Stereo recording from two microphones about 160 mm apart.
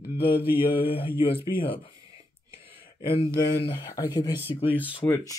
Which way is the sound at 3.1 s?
35° left (ahead or behind).